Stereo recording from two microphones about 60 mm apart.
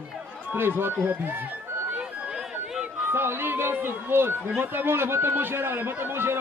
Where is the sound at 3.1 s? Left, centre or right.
Right.